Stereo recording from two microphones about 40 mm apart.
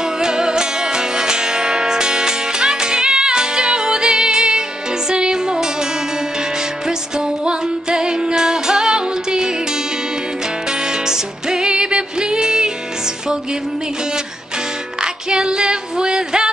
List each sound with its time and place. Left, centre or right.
0.2 s music: centre
6.9 s music: right
11.1 s music: centre
15.0 s music: centre